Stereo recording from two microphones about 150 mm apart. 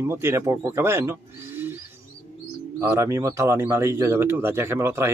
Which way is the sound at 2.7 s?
20° right (ahead or behind).